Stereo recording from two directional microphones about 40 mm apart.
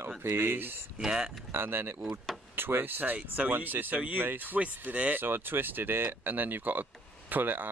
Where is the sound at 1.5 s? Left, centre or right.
Right.